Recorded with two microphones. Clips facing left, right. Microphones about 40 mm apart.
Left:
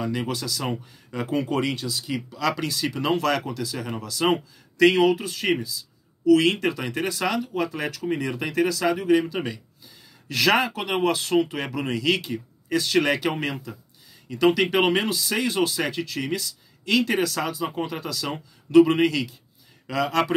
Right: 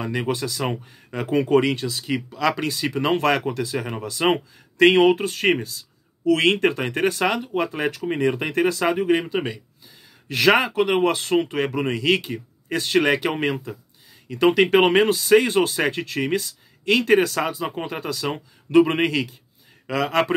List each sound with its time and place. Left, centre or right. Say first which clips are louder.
0.0 s speech: right 3 dB; right